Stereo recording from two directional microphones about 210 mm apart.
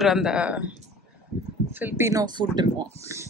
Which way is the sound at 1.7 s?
10° right (ahead or behind).